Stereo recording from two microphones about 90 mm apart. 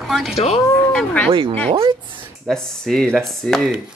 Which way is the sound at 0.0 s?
Centre (ahead or behind).